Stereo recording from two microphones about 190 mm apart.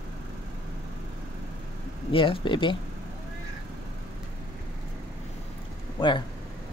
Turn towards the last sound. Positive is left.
turn(degrees=25)  # may be behind; listen again after turning